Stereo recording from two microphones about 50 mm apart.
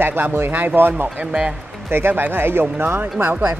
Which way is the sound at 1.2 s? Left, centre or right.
Right.